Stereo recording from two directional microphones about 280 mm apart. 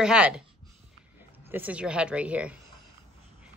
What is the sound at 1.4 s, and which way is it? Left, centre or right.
Speech, centre.